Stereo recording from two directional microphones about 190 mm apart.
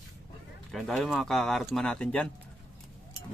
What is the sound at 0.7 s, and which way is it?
Speech, centre (ahead or behind).